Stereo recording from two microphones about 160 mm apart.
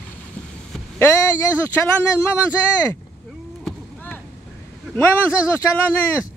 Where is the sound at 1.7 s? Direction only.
15° left (ahead or behind).